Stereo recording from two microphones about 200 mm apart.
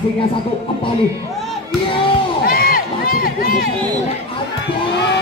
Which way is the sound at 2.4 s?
45° left (ahead or behind).